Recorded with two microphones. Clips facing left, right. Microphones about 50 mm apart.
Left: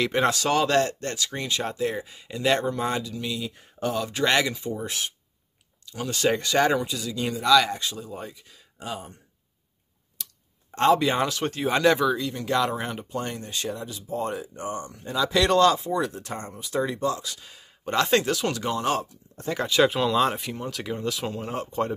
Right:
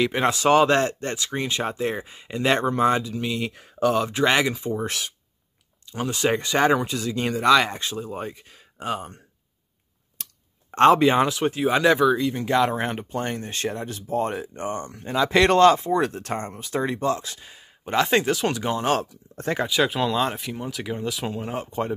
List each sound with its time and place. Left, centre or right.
0.0 s speech: centre
0.4 s speech: right
3.5 s speech: right
4.1 s speech: centre
5.9 s speech: right
10.2 s clicking: right
10.7 s speech: right
11.1 s speech: right
12.1 s speech: right
12.8 s speech: right
18.9 s speech: right
19.6 s speech: centre